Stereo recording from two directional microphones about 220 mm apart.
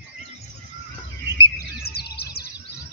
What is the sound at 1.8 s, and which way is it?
Bird, 45° left (ahead or behind).